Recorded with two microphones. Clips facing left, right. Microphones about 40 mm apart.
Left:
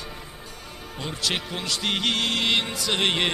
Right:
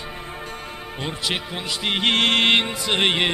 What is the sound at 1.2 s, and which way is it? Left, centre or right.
Speech, centre.